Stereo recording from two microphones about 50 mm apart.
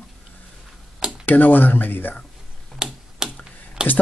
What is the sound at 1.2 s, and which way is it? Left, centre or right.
Speech, left.